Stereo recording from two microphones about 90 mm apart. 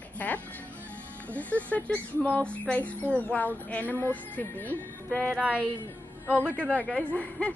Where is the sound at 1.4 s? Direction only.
15° left (ahead or behind).